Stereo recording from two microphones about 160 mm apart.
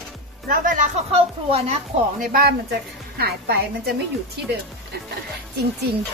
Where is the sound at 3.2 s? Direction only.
90° right.